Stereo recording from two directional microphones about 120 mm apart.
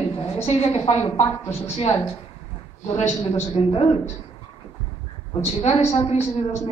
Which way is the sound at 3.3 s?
60° left (ahead or behind).